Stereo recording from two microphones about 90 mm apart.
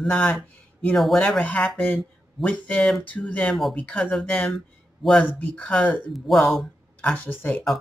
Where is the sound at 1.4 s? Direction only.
15° left (ahead or behind).